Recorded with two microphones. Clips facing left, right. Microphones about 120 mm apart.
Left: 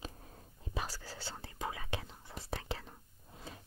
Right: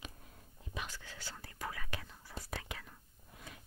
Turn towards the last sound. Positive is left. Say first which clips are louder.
# left 4 dB
turn(degrees=30)  # may be behind; listen again after turning